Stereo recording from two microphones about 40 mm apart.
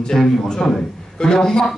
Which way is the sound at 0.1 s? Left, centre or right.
Centre.